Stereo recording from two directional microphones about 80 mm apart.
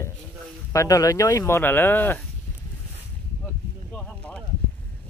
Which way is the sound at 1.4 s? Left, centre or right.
Left.